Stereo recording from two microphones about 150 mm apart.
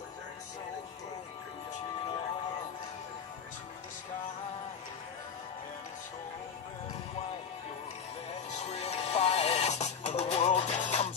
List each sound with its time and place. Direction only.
8.5 s music: 45° left (ahead or behind)